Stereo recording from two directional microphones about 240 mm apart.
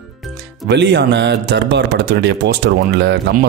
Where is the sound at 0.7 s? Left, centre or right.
Right.